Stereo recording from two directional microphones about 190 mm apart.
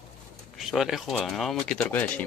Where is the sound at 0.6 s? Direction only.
Centre (ahead or behind).